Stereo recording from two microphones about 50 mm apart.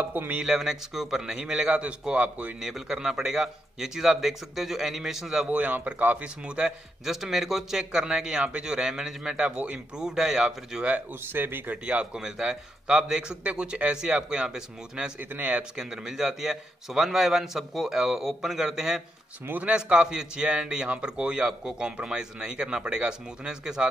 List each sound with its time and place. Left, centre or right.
0.0 s speech: right
0.4 s a man's voice: centre; by 2.5 s right
2.6 s a man's voice: centre
5.5 s speech: right
6.2 s speech: right
7.1 s a man's voice: centre
11.3 s speech: right
11.7 s speech: right
12.2 s a man's voice: centre
15.1 s speech: right
15.7 s a man's voice: centre